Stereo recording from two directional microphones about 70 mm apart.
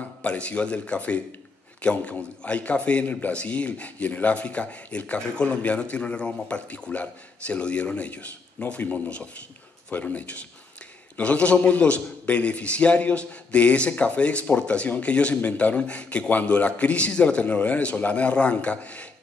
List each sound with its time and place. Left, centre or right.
0.2 s a man's voice: centre